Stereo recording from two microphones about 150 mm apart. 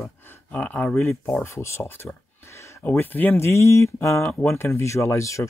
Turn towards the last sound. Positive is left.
turn(degrees=20)  # may be behind; listen again after turning